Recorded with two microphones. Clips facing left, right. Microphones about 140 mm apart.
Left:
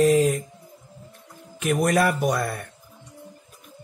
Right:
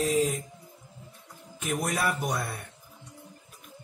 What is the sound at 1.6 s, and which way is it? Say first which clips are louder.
Speech: left 8 dB; 85° left.